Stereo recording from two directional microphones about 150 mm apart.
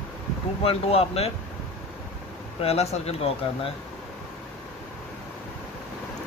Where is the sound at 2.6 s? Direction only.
45° left (ahead or behind).